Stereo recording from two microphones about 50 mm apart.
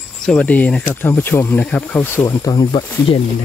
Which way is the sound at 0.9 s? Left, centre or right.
Left.